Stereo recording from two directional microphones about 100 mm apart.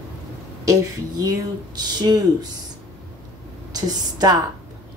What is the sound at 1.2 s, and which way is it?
Speech, 40° right (ahead or behind).